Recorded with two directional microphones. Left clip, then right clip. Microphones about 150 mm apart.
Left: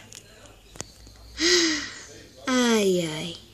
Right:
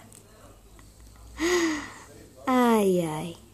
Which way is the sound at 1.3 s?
5° right (ahead or behind).